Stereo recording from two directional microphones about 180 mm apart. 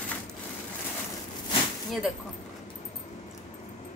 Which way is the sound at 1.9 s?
Centre (ahead or behind).